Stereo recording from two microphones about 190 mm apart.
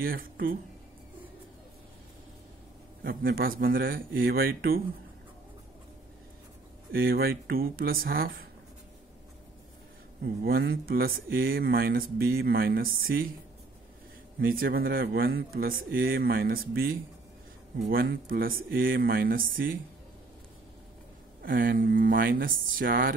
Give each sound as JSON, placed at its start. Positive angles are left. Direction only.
{"t": 0.0, "sound": "speech", "side_deg": -50}
{"t": 3.0, "sound": "speech", "side_deg": -50}
{"t": 6.9, "sound": "speech", "side_deg": -50}
{"t": 10.2, "sound": "speech", "side_deg": -55}
{"t": 14.4, "sound": "speech", "side_deg": -50}
{"t": 17.9, "sound": "speech", "side_deg": -50}
{"t": 21.4, "sound": "speech", "side_deg": -50}